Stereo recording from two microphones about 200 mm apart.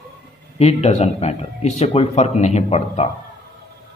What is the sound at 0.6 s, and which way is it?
Speech, 30° left (ahead or behind).